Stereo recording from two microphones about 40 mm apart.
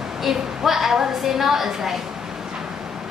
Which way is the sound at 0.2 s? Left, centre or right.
Centre.